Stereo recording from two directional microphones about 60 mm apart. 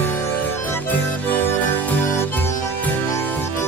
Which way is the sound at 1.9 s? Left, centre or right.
Left.